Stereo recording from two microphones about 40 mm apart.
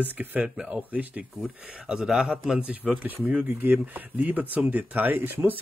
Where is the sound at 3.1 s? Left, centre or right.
Right.